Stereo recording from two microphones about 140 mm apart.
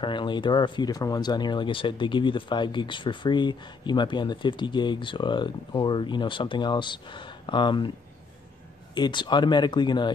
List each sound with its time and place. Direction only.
0.0 s speech: 35° left (ahead or behind)
8.9 s speech: 35° left (ahead or behind)